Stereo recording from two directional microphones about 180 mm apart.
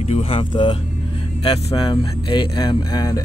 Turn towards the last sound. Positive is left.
turn(degrees=20)  # may be behind; listen again after turning